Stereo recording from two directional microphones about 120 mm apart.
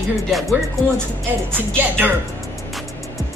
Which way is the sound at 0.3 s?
Centre (ahead or behind).